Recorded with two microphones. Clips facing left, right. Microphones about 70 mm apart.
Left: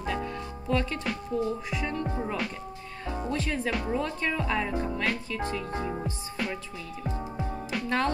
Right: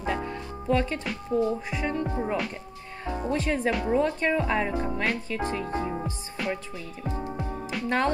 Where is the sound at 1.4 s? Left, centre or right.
Right.